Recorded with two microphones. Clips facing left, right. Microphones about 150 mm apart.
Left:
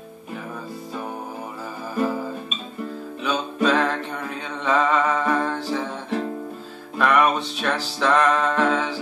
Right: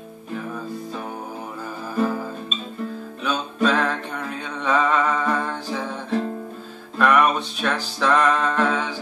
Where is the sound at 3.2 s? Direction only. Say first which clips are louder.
Even; 5° left (ahead or behind).